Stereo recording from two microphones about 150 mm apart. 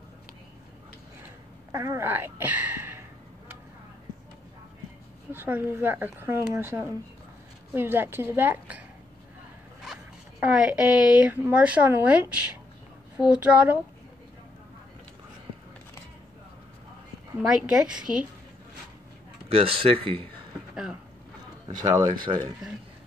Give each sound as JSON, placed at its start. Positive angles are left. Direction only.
{"t": 1.7, "sound": "speech", "side_deg": -20}
{"t": 5.3, "sound": "speech", "side_deg": -15}
{"t": 10.4, "sound": "speech", "side_deg": -5}
{"t": 17.4, "sound": "a woman's voice", "side_deg": -5}
{"t": 19.5, "sound": "speech", "side_deg": -40}
{"t": 20.7, "sound": "speech", "side_deg": -5}
{"t": 21.6, "sound": "speech", "side_deg": -25}